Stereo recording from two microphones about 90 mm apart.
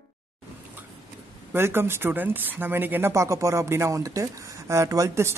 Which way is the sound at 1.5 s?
25° right (ahead or behind).